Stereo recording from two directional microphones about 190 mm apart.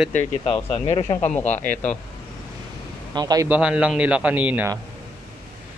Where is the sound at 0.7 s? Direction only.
25° left (ahead or behind).